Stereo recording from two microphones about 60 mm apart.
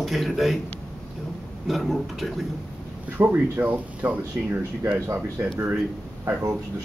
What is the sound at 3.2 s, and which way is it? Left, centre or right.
Speech, right.